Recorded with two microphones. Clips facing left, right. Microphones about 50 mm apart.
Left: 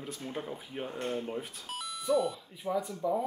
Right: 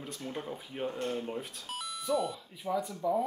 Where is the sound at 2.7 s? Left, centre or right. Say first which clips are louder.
Even; centre.